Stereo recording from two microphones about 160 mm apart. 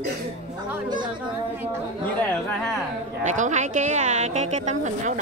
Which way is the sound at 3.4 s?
50° right (ahead or behind).